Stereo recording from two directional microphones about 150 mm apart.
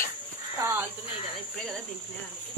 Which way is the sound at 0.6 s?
15° right (ahead or behind).